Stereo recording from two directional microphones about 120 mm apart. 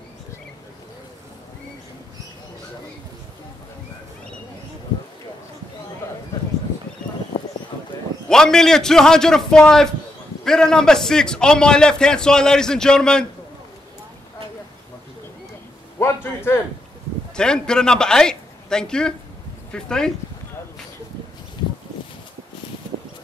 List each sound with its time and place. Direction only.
8.3 s a man's voice: 5° left (ahead or behind)
16.0 s a sound: 20° left (ahead or behind)
17.4 s a man's voice: 5° left (ahead or behind)